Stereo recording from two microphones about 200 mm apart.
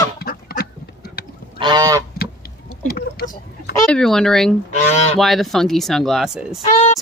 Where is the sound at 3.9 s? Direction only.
5° left (ahead or behind).